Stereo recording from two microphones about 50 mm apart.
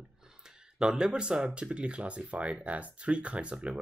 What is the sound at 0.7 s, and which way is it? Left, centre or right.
Speech, centre.